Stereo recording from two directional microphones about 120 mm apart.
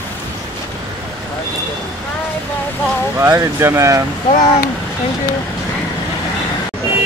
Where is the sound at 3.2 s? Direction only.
20° right (ahead or behind).